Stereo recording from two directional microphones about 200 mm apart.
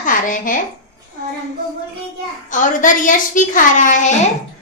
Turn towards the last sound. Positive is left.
turn(degrees=40)  # may be behind; listen again after turning